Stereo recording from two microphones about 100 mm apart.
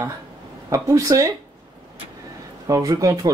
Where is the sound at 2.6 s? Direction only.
35° right (ahead or behind).